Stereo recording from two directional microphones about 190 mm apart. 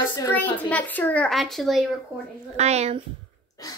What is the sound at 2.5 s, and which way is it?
Speech, 35° right (ahead or behind).